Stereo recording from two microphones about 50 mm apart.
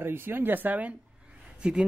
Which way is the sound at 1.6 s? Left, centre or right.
Centre.